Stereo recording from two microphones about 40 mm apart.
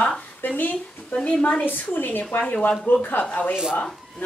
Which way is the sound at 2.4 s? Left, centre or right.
Left.